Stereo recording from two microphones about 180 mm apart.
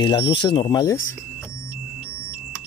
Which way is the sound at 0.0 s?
25° left (ahead or behind).